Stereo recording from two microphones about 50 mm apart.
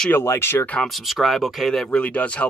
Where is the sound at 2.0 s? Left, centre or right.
Left.